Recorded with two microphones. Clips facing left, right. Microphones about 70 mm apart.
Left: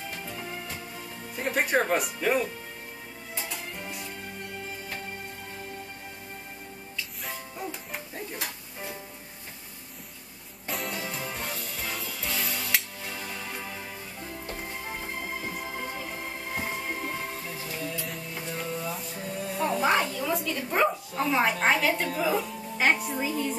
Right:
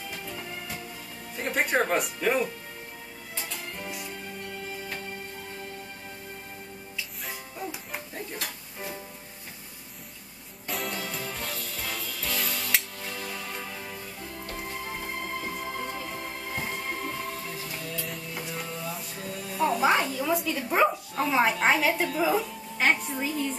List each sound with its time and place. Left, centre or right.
0.1 s music: centre
1.3 s speech: centre
3.3 s music: centre
7.0 s music: centre
10.7 s music: centre
11.0 s music: centre
19.5 s a sound: centre